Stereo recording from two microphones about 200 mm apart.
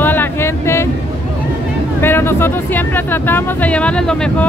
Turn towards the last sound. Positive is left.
turn(degrees=5)  # may be behind; listen again after turning